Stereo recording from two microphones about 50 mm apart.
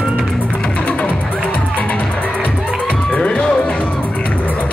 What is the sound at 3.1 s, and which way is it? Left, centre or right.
Music, left.